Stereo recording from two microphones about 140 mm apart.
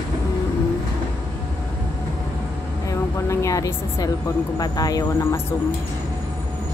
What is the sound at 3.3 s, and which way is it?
A woman's voice, 20° left (ahead or behind).